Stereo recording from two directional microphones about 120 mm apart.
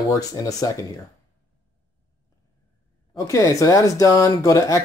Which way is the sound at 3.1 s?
25° left (ahead or behind).